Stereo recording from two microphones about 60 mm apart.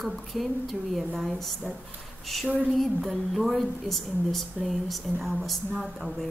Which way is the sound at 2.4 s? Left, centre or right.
Right.